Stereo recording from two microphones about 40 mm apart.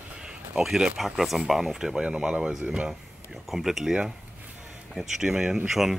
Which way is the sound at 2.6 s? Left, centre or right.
Right.